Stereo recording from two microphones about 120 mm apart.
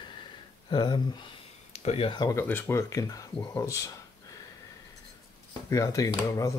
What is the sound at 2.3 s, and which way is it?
Speech, 20° left (ahead or behind).